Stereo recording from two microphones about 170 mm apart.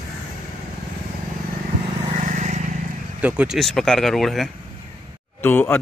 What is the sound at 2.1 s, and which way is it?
Vehicle, 45° right (ahead or behind).